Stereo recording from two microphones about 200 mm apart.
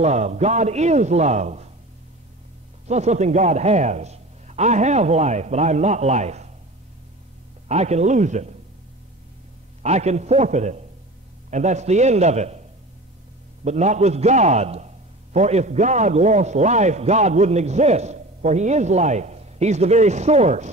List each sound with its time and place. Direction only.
0.0 s a man's voice: 35° right (ahead or behind)
2.9 s a man's voice: 35° right (ahead or behind)
7.6 s a man's voice: 35° right (ahead or behind)
9.8 s a man's voice: 35° right (ahead or behind)
13.7 s a man's voice: 35° right (ahead or behind)